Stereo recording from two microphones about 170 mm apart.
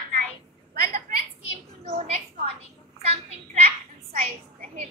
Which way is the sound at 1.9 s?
40° right (ahead or behind).